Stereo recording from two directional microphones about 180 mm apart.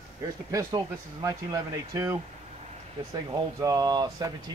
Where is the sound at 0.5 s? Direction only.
20° right (ahead or behind).